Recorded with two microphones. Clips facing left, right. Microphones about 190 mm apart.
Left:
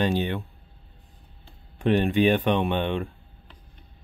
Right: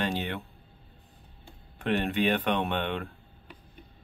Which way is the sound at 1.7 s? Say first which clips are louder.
Left 6 dB; 15° left (ahead or behind).